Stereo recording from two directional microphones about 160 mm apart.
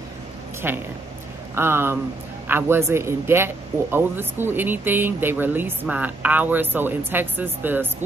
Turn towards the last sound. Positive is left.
turn(degrees=-10)  # may be behind; listen again after turning